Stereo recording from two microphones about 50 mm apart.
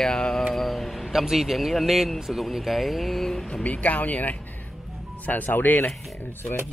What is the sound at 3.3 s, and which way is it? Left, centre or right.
Speech, left.